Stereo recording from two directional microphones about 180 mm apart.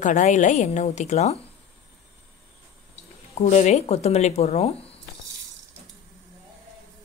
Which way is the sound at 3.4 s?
40° left (ahead or behind).